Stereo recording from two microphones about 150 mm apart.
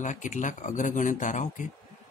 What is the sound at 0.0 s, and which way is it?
A man's voice, 55° left (ahead or behind).